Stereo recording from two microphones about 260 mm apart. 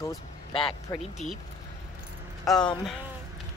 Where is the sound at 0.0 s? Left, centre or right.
Centre.